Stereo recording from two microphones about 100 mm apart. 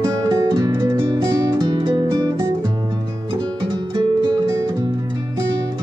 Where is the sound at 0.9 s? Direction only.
50° right (ahead or behind).